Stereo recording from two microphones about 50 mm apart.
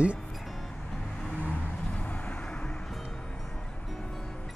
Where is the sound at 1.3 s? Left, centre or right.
Left.